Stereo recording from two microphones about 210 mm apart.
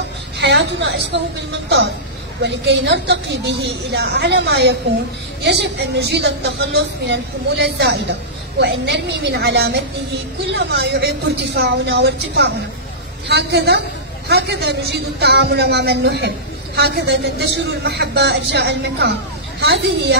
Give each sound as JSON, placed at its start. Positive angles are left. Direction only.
{"t": 0.4, "sound": "a woman's voice", "side_deg": -55}
{"t": 2.4, "sound": "a woman's voice", "side_deg": -55}